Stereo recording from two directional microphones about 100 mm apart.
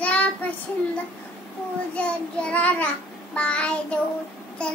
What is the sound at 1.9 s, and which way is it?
Child singing, 15° left (ahead or behind).